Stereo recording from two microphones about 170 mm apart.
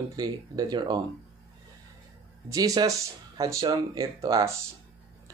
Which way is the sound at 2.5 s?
20° right (ahead or behind).